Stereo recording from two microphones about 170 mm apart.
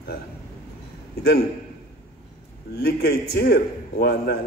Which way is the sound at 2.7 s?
70° left (ahead or behind).